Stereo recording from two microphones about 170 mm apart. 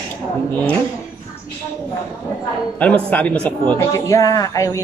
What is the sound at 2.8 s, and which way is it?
A woman's voice, 10° left (ahead or behind).